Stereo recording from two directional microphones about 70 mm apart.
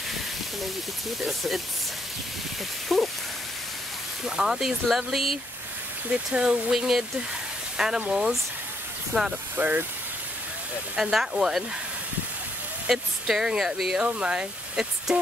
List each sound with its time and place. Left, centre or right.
1.2 s speech: centre
2.9 s speech: centre
4.4 s speech: centre
6.3 s speech: centre
9.1 s speech: right
11.0 s speech: centre
12.8 s speech: centre
14.0 s speech: centre